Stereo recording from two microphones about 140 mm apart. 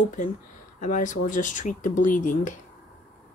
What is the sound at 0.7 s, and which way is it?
Speech, 65° left (ahead or behind).